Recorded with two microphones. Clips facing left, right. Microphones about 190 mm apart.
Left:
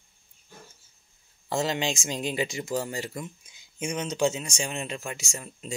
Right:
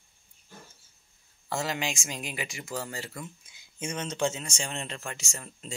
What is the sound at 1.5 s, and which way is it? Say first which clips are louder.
Speech: left 4 dB; 25° left (ahead or behind).